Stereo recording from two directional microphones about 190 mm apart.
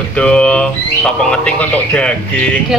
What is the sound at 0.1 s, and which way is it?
Speech, 5° left (ahead or behind).